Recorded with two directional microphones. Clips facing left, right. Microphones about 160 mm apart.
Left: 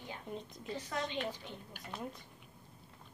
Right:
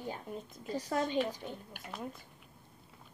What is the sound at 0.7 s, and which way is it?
A child's voice, 40° right (ahead or behind).